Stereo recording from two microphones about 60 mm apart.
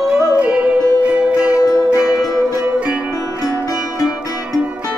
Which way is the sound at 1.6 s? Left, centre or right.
Left.